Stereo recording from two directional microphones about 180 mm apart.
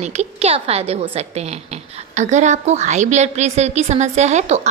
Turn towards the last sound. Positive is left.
turn(degrees=-40)  # may be behind; listen again after turning